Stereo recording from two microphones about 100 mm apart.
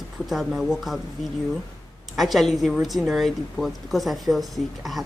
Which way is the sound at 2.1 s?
Centre (ahead or behind).